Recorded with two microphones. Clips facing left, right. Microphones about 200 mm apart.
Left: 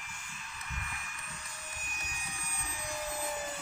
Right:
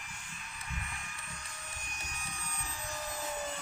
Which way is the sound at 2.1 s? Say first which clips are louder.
Right 1 dB; 10° left (ahead or behind).